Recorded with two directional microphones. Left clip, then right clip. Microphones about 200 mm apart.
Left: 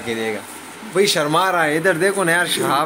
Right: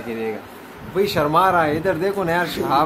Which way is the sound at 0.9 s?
5° left (ahead or behind).